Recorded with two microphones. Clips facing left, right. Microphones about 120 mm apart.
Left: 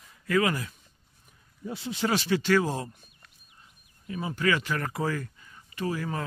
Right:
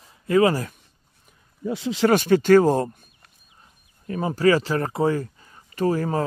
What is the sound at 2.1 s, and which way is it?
Speech, 50° right (ahead or behind).